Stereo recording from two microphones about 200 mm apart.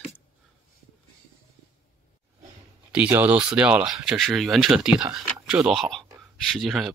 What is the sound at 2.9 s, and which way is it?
Speech, 10° right (ahead or behind).